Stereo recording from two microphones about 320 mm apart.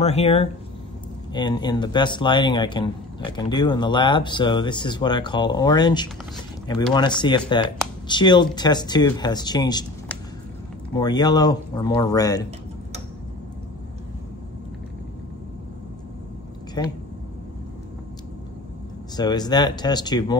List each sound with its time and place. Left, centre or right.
0.0 s speech: centre
16.8 s speech: centre
19.1 s speech: centre